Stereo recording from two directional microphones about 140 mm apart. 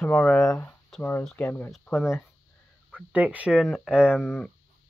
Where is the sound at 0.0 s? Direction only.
10° left (ahead or behind).